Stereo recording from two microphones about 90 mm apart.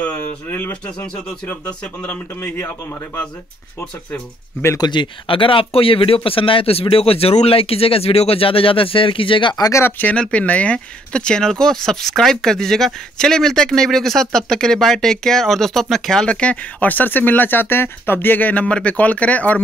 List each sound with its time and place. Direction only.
0.0 s speech: 15° left (ahead or behind)
1.0 s a man's voice: 10° left (ahead or behind)
4.7 s speech: 55° left (ahead or behind)
9.7 s a man's voice: 30° left (ahead or behind)